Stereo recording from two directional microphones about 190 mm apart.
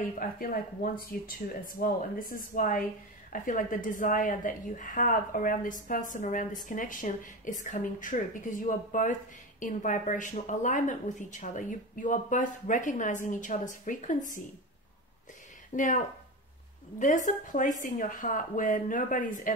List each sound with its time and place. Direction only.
0.2 s a woman's voice: 50° left (ahead or behind)
15.7 s speech: 45° left (ahead or behind)
17.0 s a woman's voice: 40° left (ahead or behind)